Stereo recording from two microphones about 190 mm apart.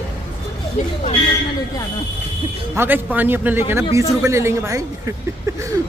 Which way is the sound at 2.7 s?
10° right (ahead or behind).